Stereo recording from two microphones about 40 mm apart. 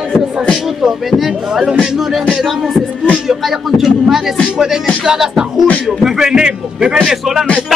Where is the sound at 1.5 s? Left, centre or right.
Centre.